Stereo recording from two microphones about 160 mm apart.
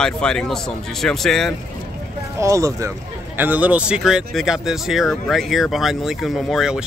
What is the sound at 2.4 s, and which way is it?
Speech, 20° right (ahead or behind).